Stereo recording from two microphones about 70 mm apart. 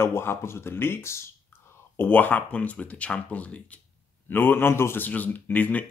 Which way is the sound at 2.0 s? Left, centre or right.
Left.